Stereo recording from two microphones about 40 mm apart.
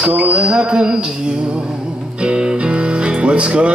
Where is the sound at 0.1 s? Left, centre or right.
Right.